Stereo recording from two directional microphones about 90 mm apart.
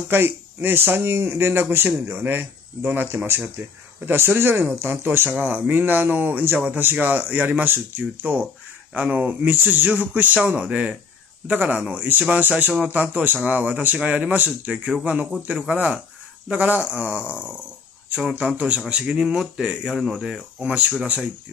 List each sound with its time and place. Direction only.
0.1 s speech: 25° right (ahead or behind); by 21.1 s 5° right (ahead or behind)